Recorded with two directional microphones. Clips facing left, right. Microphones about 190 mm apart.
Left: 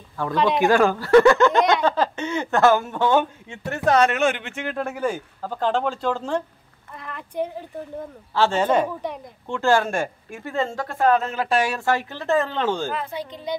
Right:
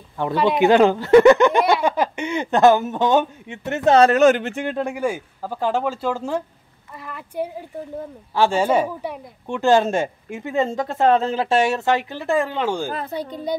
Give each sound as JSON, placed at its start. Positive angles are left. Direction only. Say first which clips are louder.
{"t": 0.3, "sound": "a woman's voice", "louder": "right 1 dB", "side_deg": -5}
{"t": 0.6, "sound": "speech", "louder": "right 5 dB", "side_deg": -20}
{"t": 4.7, "sound": "a woman's voice", "louder": "left 1 dB", "side_deg": -10}
{"t": 12.9, "sound": "a woman's voice", "louder": "right 2 dB", "side_deg": -40}